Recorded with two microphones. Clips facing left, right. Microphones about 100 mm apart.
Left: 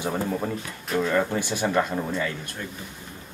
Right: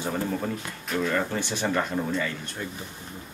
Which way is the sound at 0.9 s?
10° left (ahead or behind).